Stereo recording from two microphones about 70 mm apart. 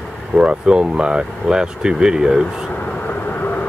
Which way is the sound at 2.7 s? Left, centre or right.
Left.